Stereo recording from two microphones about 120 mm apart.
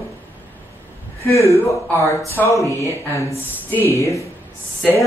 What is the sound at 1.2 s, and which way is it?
Speech, 25° left (ahead or behind).